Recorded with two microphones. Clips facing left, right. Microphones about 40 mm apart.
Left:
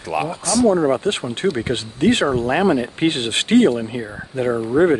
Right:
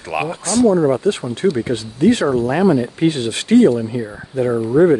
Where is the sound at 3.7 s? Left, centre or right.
Left.